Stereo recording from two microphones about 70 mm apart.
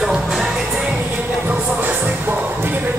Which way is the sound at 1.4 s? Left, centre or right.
Right.